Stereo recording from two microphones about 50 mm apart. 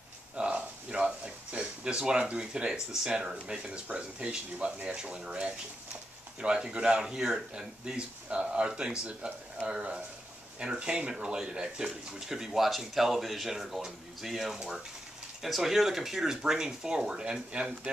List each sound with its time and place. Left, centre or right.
0.4 s speech: right